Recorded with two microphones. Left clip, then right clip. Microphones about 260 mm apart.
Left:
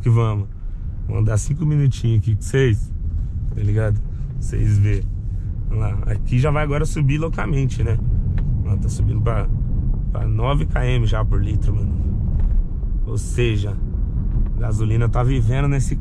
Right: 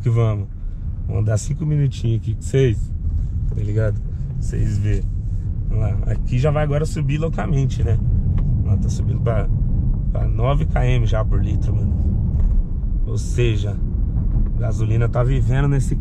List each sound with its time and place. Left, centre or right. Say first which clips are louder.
0.0 s speech: even; left
3.5 s speech: even; left
13.1 s speech: even; left
15.7 s speech: right 1 dB; centre